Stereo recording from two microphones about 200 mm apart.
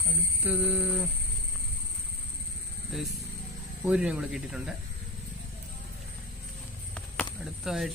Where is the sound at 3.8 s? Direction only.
5° right (ahead or behind).